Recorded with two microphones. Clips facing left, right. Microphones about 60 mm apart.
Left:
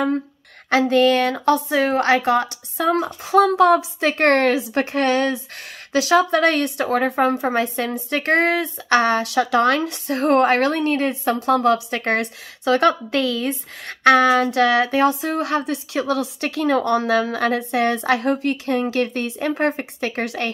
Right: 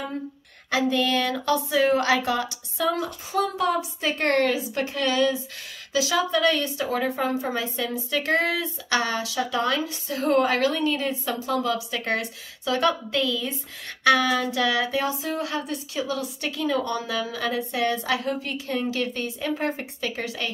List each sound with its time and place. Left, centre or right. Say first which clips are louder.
0.7 s speech: left 7 dB; left
3.3 s a woman's voice: left 11 dB; left